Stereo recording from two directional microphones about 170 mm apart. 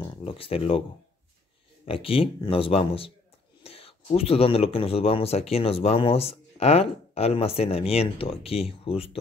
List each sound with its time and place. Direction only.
0.0 s speech: 30° left (ahead or behind)
1.9 s speech: 35° left (ahead or behind)